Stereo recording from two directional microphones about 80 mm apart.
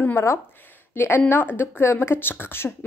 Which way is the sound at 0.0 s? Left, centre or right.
Left.